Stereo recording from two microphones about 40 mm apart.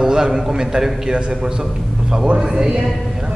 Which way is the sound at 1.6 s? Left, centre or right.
Centre.